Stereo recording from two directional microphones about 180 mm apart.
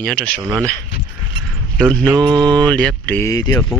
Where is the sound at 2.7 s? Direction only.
10° left (ahead or behind).